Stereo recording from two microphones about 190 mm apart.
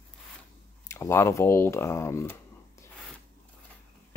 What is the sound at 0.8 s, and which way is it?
Speech, 15° left (ahead or behind).